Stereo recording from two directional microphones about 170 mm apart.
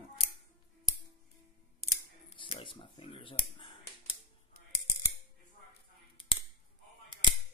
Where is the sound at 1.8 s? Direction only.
35° left (ahead or behind).